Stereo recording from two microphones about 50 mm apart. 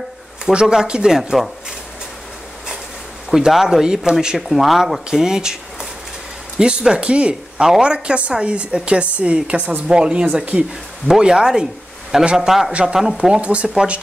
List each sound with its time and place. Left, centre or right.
0.5 s speech: centre
3.3 s speech: centre
4.4 s a woman's voice: centre
10.2 s a woman's voice: right
11.1 s speech: centre
13.4 s a woman's voice: right